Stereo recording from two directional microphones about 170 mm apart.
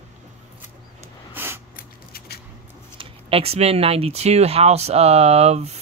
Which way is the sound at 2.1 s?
70° left (ahead or behind).